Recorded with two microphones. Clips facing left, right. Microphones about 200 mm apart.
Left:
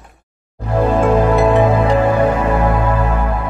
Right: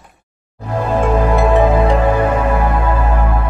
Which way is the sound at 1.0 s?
Centre (ahead or behind).